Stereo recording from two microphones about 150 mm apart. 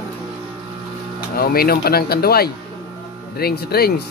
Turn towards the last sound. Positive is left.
turn(degrees=90)